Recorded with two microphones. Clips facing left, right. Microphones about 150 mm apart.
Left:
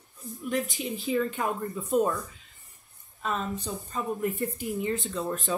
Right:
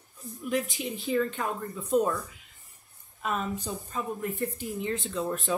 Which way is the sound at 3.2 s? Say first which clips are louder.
Even; centre (ahead or behind).